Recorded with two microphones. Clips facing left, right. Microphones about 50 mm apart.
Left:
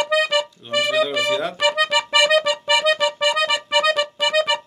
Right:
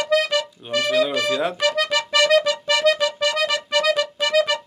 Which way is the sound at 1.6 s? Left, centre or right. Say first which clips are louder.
Left 2 dB; centre.